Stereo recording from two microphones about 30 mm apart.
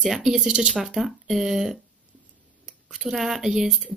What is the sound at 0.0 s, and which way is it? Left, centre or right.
Speech, centre.